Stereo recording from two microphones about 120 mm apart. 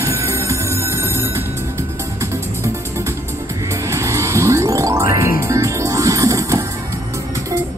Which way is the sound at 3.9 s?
25° right (ahead or behind).